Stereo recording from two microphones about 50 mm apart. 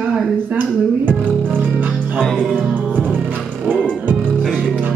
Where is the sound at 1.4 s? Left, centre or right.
Right.